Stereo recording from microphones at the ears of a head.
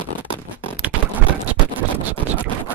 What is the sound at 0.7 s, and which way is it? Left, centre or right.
Scratch, right.